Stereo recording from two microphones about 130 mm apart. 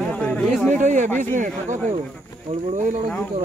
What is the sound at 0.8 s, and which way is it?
Speech, 70° right (ahead or behind).